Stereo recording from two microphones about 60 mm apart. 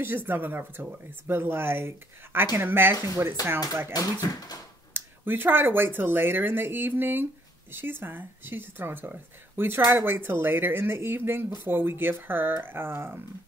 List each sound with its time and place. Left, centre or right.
0.0 s speech: right
3.9 s speech: left
4.9 s speech: right